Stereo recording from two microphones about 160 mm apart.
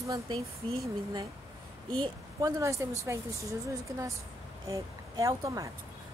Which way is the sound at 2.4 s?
20° right (ahead or behind).